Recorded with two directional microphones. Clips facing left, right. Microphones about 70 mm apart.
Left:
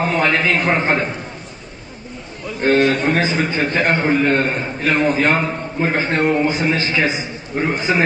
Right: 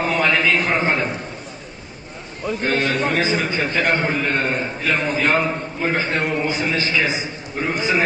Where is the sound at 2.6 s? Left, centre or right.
Left.